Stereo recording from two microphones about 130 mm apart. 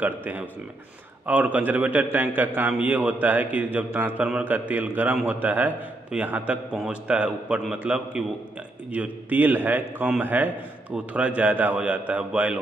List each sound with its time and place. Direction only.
0.0 s a man's voice: 15° right (ahead or behind)